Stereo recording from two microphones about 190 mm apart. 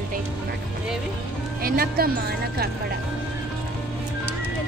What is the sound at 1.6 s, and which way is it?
A woman's voice, 50° right (ahead or behind).